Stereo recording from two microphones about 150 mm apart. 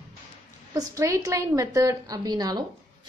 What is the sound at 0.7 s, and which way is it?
A woman's voice, 25° right (ahead or behind).